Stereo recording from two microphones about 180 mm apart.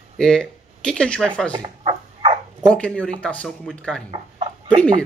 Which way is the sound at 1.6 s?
30° right (ahead or behind).